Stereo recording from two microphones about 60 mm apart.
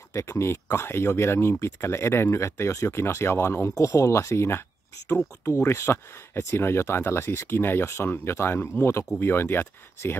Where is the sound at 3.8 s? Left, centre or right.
Left.